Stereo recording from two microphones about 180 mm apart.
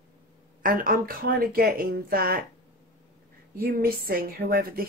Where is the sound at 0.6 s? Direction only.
50° right (ahead or behind).